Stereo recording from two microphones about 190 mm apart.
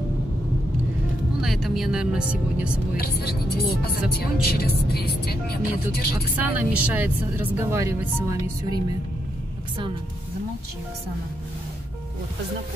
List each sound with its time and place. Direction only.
1.4 s speech: centre (ahead or behind)
3.0 s speech: 55° left (ahead or behind)
6.3 s speech: 10° right (ahead or behind)